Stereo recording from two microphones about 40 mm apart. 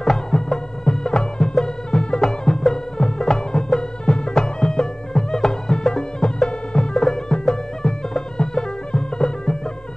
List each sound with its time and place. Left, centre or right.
0.0 s music: centre